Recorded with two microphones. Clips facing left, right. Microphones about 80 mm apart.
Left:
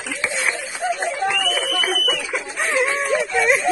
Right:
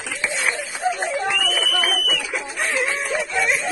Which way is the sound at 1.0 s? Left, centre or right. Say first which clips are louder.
Left 1 dB; centre.